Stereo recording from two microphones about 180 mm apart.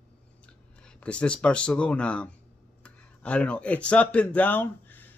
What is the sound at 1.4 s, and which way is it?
Speech, 5° left (ahead or behind).